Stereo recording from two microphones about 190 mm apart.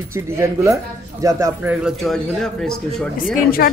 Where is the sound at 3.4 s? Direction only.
50° left (ahead or behind).